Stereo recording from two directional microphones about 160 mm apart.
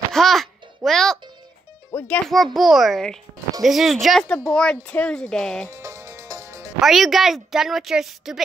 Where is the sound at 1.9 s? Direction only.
10° left (ahead or behind).